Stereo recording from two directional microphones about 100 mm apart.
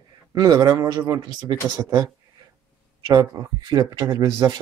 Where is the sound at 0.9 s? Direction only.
45° right (ahead or behind).